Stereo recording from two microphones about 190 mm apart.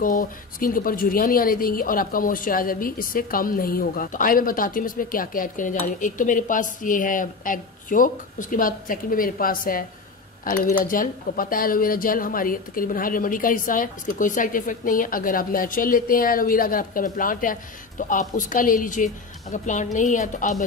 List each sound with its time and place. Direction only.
0.0 s a woman's voice: 45° left (ahead or behind)